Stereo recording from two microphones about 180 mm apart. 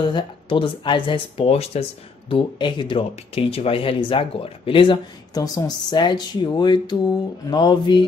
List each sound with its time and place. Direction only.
0.0 s speech: 25° left (ahead or behind)